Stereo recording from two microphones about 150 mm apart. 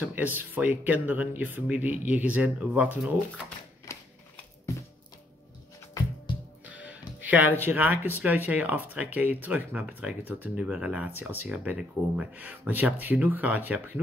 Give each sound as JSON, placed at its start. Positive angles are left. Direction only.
{"t": 0.1, "sound": "speech", "side_deg": -10}
{"t": 3.9, "sound": "a sound", "side_deg": 20}
{"t": 6.3, "sound": "music", "side_deg": 35}
{"t": 6.6, "sound": "music", "side_deg": -10}
{"t": 7.6, "sound": "speech", "side_deg": -10}